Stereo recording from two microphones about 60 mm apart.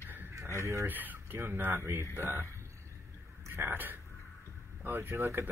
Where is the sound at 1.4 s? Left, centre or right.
Right.